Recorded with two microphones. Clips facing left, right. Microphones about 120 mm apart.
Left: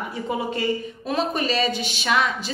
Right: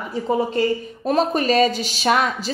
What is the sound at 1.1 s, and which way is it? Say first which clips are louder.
A woman's voice: right 6 dB; 40° right (ahead or behind).